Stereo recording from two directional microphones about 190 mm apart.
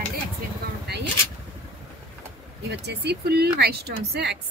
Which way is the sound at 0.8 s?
60° right (ahead or behind).